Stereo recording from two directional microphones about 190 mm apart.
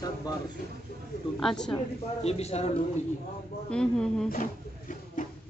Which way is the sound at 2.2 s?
35° left (ahead or behind).